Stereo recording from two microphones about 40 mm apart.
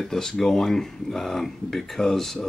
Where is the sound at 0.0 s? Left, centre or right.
Centre.